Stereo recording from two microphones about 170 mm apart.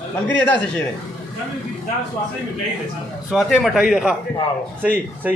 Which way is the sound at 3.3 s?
Centre (ahead or behind).